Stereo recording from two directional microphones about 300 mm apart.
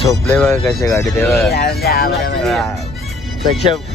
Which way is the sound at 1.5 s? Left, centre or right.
Left.